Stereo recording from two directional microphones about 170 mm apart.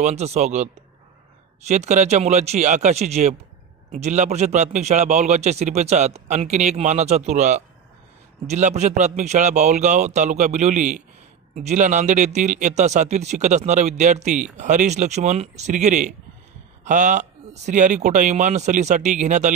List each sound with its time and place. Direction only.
0.0 s speech: 40° right (ahead or behind)
1.7 s a man's voice: 40° right (ahead or behind)